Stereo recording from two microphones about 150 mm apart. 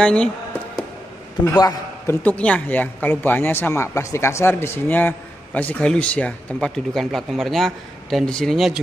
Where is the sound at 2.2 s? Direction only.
10° left (ahead or behind).